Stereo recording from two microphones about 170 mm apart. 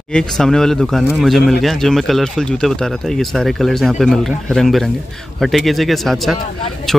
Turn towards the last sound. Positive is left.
turn(degrees=0)  # may be behind; listen again after turning